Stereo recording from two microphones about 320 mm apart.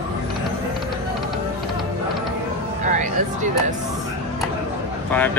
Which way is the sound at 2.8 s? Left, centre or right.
Right.